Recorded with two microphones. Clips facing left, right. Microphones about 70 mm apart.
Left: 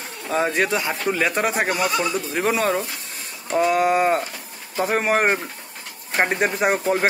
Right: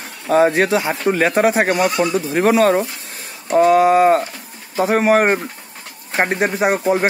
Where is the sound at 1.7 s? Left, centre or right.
Right.